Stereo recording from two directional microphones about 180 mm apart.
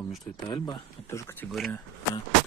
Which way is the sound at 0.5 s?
25° left (ahead or behind).